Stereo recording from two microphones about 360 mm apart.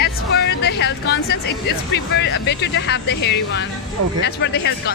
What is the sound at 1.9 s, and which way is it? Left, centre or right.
Speech, left.